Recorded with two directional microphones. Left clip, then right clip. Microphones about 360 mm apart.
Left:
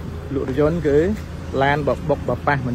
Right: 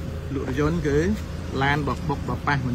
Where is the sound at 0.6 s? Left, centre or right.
Centre.